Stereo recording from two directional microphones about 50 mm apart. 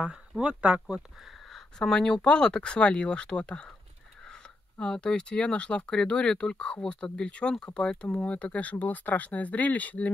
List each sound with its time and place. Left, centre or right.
0.4 s speech: right
1.5 s speech: centre
4.7 s speech: centre